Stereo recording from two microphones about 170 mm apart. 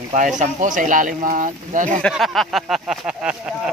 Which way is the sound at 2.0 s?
Centre (ahead or behind).